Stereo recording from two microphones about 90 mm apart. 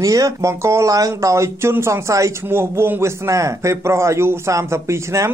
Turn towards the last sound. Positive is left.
turn(degrees=-30)  # may be behind; listen again after turning